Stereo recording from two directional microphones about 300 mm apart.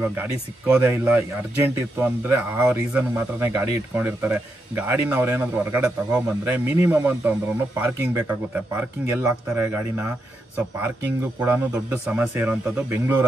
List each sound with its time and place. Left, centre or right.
0.0 s speech: centre